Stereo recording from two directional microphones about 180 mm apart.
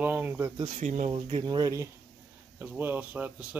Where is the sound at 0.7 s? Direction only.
40° right (ahead or behind); by 3.4 s 10° right (ahead or behind).